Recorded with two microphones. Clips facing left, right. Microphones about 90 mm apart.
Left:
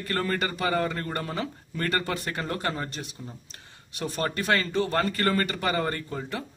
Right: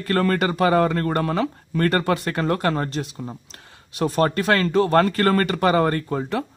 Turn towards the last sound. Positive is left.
turn(degrees=-60)  # may be behind; listen again after turning